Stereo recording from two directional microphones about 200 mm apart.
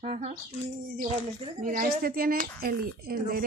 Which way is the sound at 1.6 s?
45° right (ahead or behind).